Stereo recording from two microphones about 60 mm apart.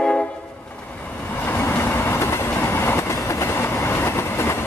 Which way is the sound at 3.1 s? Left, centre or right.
Left.